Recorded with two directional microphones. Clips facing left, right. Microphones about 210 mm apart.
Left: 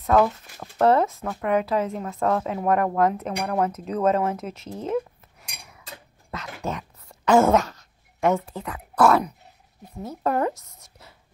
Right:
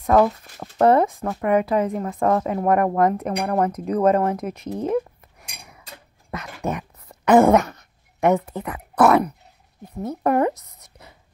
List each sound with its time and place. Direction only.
0.2 s speech: 20° right (ahead or behind)
1.7 s a woman's voice: 55° right (ahead or behind)
2.0 s speech: 15° right (ahead or behind)
6.3 s a sound: 15° right (ahead or behind)
7.4 s dog: 15° right (ahead or behind)
8.6 s speech: 20° right (ahead or behind)